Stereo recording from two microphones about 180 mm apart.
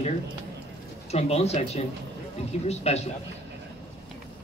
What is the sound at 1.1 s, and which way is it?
Speech, 35° left (ahead or behind).